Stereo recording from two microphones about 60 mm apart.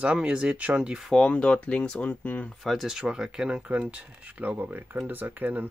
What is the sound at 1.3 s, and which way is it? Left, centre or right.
Speech, centre.